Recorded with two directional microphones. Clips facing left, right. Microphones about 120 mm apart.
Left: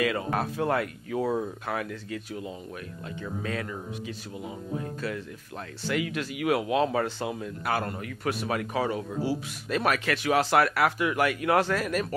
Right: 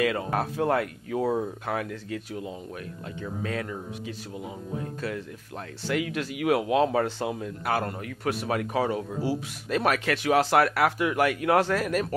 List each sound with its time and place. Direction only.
0.0 s speech: 40° right (ahead or behind)
5.9 s speech: 45° right (ahead or behind)